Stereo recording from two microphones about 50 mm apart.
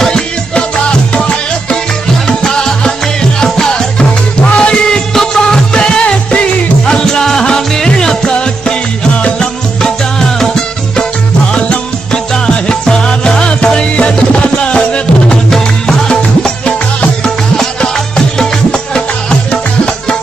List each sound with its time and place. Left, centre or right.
0.0 s music: centre
2.2 s music: centre
5.1 s music of bollywood: centre
5.8 s music: left
7.1 s music: centre